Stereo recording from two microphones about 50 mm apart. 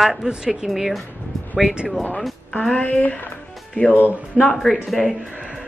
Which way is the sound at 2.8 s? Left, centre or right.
Left.